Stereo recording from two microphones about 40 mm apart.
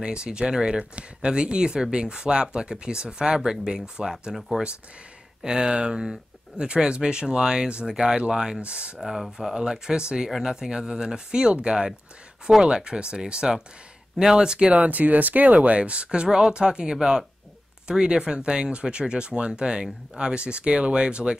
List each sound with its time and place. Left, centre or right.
0.0 s speech: right
5.4 s speech: centre
8.5 s speech: right
9.0 s speech: centre
9.6 s speech: centre
14.8 s speech: right